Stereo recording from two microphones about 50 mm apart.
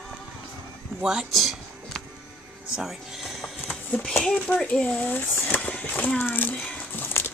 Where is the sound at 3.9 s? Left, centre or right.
Left.